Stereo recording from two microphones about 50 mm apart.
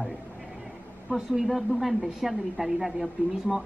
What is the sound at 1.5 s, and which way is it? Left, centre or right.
A woman's voice, centre.